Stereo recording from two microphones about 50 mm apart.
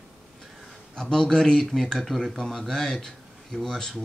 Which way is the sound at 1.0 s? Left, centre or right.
Centre.